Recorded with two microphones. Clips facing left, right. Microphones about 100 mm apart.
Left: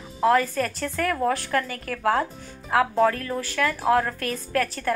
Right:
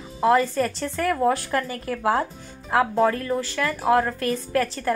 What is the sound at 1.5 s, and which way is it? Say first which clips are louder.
Speech: even; 20° right (ahead or behind).